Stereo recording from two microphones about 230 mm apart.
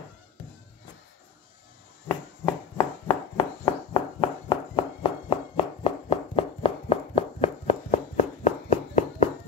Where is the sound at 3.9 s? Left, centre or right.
Left.